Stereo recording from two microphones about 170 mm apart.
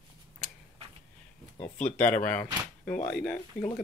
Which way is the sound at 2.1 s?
10° left (ahead or behind).